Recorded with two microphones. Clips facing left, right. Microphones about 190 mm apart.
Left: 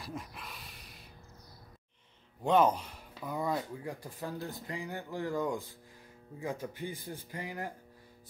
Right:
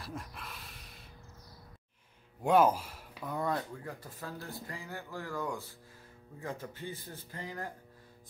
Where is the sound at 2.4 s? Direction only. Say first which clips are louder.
Right 1 dB; 10° right (ahead or behind).